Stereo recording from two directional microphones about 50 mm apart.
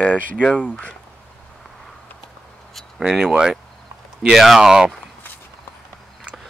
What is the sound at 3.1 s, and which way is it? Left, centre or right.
Speech, centre.